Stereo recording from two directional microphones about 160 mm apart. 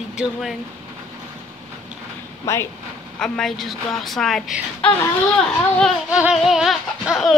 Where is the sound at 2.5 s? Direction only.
15° left (ahead or behind).